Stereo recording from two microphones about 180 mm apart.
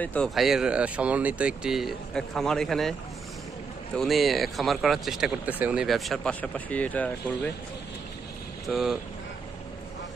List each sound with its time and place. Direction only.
0.0 s speech: 5° left (ahead or behind)
3.9 s speech: centre (ahead or behind)
8.6 s speech: centre (ahead or behind)